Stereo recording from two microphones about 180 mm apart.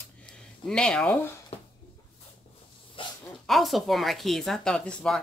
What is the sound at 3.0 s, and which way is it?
Dog, 30° left (ahead or behind).